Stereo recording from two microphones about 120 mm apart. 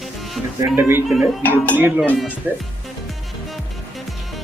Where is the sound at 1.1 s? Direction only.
Centre (ahead or behind).